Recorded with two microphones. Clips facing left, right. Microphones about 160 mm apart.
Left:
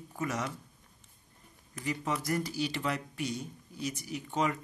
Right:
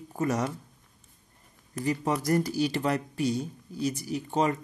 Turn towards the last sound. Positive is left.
turn(degrees=-35)  # may be behind; listen again after turning